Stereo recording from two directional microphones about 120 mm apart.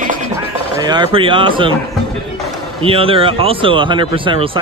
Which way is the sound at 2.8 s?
50° right (ahead or behind).